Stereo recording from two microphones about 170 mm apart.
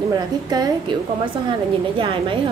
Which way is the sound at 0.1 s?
25° right (ahead or behind).